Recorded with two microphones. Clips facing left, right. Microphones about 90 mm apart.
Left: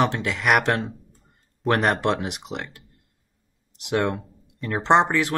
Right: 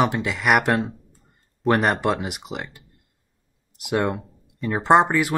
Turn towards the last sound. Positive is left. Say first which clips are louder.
# right 2 dB
turn(degrees=-5)  # may be behind; listen again after turning